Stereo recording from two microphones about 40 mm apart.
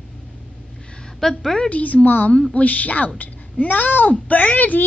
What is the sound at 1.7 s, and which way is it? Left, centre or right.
A woman's voice, left.